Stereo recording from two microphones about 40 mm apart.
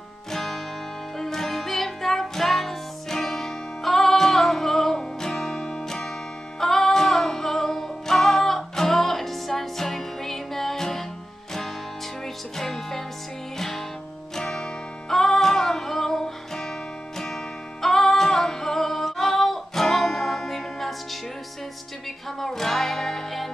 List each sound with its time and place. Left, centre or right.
0.3 s music: centre
12.5 s music: centre
17.8 s female singing: centre
22.4 s music: centre